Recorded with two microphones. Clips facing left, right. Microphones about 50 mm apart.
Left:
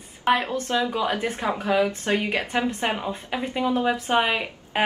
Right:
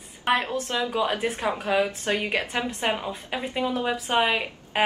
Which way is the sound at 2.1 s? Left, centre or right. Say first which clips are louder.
Left 2 dB; centre.